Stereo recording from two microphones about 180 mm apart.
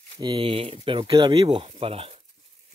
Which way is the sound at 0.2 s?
30° right (ahead or behind).